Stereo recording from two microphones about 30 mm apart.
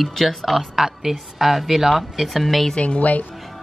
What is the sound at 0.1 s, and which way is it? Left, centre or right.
Speech, centre.